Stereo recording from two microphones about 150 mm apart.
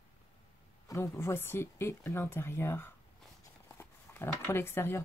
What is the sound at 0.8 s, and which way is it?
Speech, 20° left (ahead or behind).